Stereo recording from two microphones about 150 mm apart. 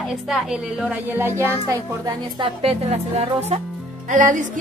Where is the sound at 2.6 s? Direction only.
40° right (ahead or behind).